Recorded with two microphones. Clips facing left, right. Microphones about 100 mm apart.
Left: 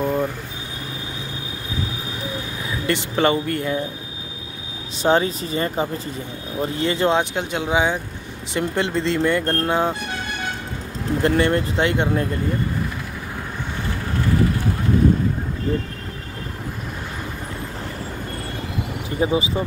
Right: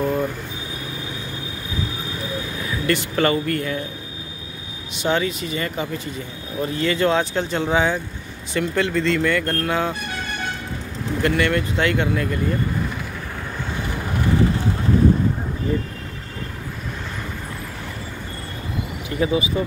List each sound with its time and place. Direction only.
0.0 s a sound: 15° left (ahead or behind)
2.9 s speech: 20° left (ahead or behind)
5.0 s speech: 35° left (ahead or behind)
11.2 s speech: 30° left (ahead or behind)
19.0 s speech: 30° left (ahead or behind)